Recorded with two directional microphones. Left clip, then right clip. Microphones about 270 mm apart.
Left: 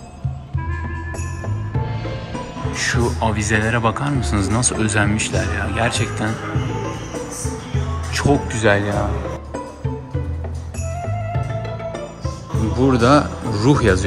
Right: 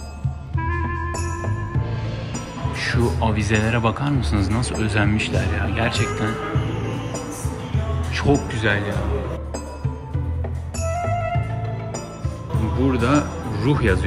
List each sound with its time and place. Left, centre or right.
2.7 s speech: centre
8.2 s speech: centre
12.8 s speech: centre